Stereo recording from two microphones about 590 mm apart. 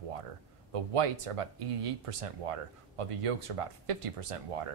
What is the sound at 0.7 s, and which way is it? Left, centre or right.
Speech, right.